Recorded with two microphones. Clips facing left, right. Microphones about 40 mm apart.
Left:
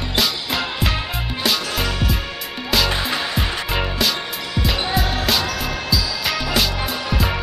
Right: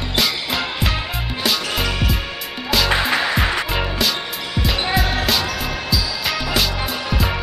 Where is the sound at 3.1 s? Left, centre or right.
Right.